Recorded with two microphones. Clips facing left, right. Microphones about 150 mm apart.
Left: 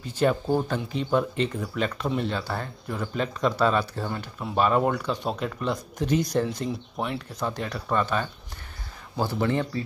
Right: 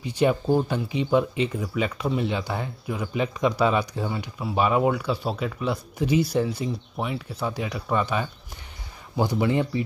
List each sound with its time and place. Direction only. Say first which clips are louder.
0.0 s speech: right 2 dB; 10° right (ahead or behind)